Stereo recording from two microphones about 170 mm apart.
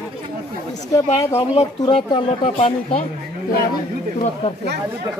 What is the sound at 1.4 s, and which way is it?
Speech, 35° left (ahead or behind).